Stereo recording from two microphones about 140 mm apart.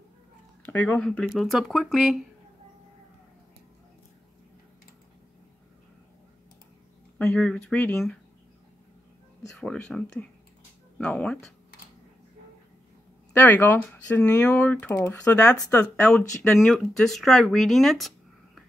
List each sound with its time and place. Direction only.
0.7 s speech: 15° left (ahead or behind)
7.2 s speech: 10° left (ahead or behind)
9.6 s speech: 5° left (ahead or behind)
13.3 s speech: 15° left (ahead or behind)